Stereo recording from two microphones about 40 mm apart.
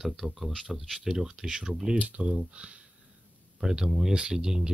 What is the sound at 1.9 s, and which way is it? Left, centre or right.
Speech, right.